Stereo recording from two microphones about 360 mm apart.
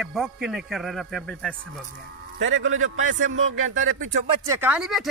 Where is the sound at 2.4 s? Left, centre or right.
Right.